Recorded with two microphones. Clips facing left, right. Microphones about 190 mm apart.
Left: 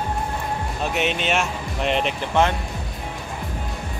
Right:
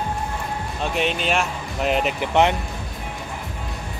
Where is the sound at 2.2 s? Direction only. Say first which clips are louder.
Right 3 dB; 20° right (ahead or behind).